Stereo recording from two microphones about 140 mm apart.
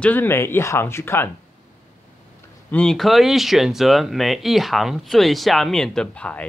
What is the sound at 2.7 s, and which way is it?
Speech, 5° left (ahead or behind).